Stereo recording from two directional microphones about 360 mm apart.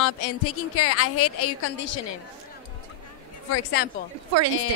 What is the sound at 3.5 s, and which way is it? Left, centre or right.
Speech, left.